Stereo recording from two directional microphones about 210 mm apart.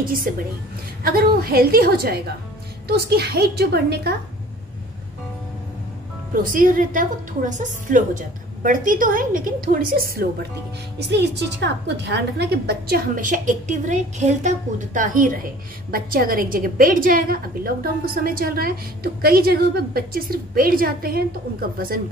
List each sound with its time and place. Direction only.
0.0 s a woman's voice: 45° right (ahead or behind)
6.3 s a woman's voice: 40° right (ahead or behind)